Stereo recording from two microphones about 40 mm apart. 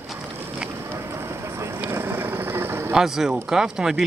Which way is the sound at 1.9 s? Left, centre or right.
Right.